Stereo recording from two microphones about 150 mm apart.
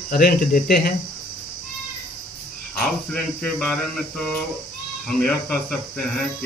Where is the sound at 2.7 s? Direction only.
Centre (ahead or behind).